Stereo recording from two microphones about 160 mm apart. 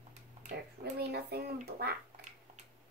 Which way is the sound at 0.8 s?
85° right.